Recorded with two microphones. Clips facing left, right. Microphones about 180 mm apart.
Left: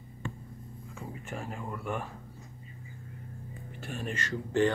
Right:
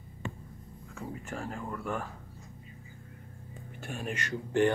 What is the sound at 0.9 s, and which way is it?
Speech, 15° left (ahead or behind).